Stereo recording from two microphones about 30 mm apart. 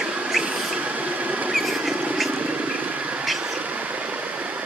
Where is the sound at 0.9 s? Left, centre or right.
Right.